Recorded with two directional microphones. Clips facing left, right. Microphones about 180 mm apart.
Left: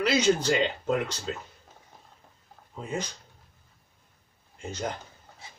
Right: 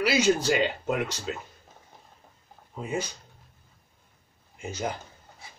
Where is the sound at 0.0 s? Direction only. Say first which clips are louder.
Even; 5° right (ahead or behind).